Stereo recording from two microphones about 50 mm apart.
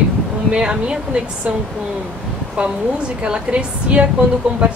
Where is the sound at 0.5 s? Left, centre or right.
Centre.